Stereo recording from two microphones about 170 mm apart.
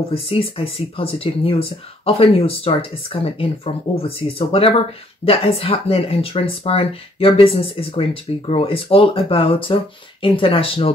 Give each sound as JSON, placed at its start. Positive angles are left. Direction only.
{"t": 0.1, "sound": "speech", "side_deg": 35}